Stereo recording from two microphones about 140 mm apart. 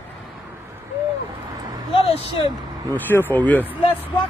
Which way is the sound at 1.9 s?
45° left (ahead or behind).